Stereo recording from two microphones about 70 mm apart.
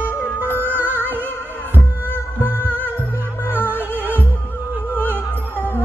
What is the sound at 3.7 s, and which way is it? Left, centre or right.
Music, right.